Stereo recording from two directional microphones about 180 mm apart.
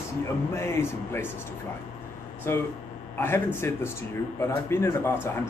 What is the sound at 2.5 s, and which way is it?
Speech, 15° left (ahead or behind).